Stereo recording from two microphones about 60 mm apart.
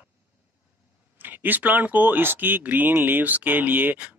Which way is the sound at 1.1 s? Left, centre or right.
Right.